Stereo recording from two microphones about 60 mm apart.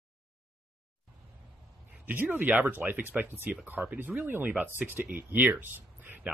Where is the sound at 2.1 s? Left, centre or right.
Right.